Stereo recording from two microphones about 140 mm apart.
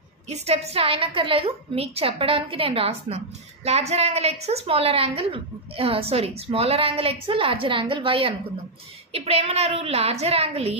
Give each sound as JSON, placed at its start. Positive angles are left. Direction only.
{"t": 0.3, "sound": "a woman's voice", "side_deg": -45}